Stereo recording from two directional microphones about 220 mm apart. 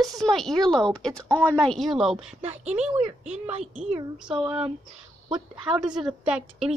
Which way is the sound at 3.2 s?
30° right (ahead or behind).